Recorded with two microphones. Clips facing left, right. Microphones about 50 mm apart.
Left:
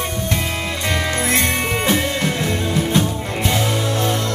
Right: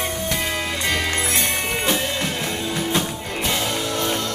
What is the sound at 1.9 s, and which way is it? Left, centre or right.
Music, centre.